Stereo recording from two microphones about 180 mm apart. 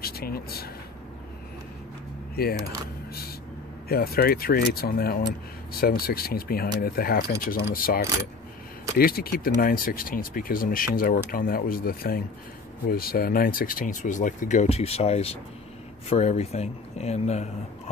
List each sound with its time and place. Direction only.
0.0 s speech: 55° left (ahead or behind)
2.4 s speech: 60° left (ahead or behind)
3.9 s speech: 60° left (ahead or behind); by 17.5 s 35° left (ahead or behind)